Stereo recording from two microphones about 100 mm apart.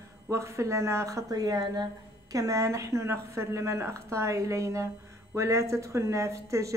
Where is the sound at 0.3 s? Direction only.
30° right (ahead or behind).